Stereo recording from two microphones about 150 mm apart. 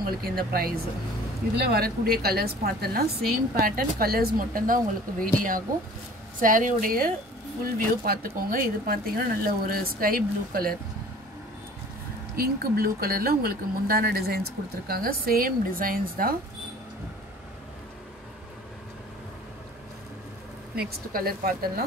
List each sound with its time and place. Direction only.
0.0 s a woman's voice: 90° right
12.4 s speech: 90° right; by 16.3 s 70° right (ahead or behind)
20.7 s a woman's voice: 90° right